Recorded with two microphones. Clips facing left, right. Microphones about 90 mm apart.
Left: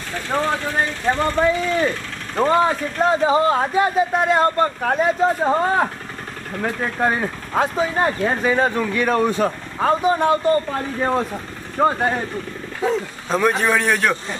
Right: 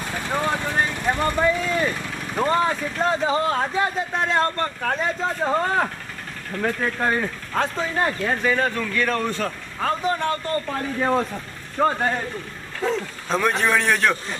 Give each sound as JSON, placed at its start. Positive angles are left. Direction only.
{"t": 0.3, "sound": "speech", "side_deg": -5}
{"t": 2.3, "sound": "speech", "side_deg": 10}
{"t": 8.0, "sound": "speech", "side_deg": 20}